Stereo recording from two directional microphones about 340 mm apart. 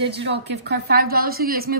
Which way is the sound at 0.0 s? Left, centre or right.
Right.